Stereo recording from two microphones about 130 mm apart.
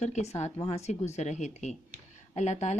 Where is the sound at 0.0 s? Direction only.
60° left (ahead or behind).